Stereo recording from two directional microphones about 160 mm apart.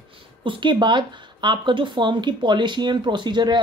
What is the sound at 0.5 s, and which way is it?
Speech, 30° right (ahead or behind).